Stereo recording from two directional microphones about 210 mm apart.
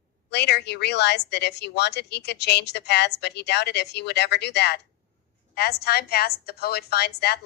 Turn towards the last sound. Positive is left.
turn(degrees=50)  # may be behind; listen again after turning